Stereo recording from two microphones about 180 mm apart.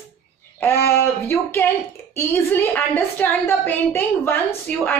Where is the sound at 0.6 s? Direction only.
15° left (ahead or behind).